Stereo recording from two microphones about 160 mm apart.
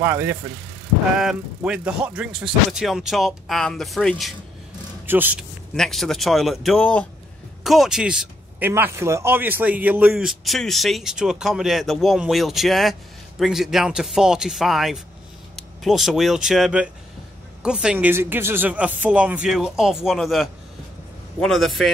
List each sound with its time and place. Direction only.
0.0 s speech: 15° right (ahead or behind)
1.1 s a man's voice: 5° right (ahead or behind)
5.0 s speech: 10° right (ahead or behind)
5.8 s a man's voice: centre (ahead or behind)